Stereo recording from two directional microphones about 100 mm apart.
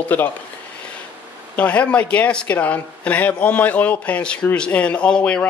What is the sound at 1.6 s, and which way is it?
Speech, 15° left (ahead or behind).